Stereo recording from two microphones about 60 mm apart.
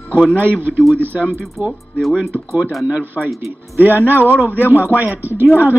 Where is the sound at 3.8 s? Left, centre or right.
Right.